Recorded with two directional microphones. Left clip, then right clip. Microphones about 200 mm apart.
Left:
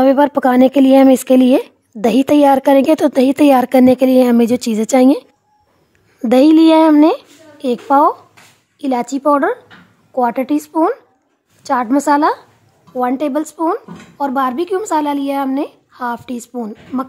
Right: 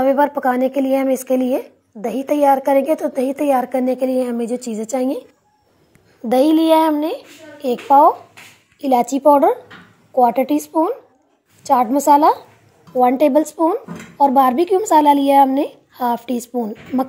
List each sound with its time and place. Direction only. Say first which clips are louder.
0.0 s a woman's voice: left 4 dB; 55° left (ahead or behind)
0.3 s speech: left 4 dB; 40° left (ahead or behind)
0.6 s a woman's voice: left 7 dB; 60° left (ahead or behind)
0.9 s a woman's voice: left 8 dB; 50° left (ahead or behind); by 4.2 s 70° left (ahead or behind)
4.2 s speech: left 9 dB; 35° left (ahead or behind)
6.2 s a woman's voice: left 5 dB; 60° left (ahead or behind)
7.1 s speech: left 9 dB; 20° left (ahead or behind); by 16.4 s centre (ahead or behind)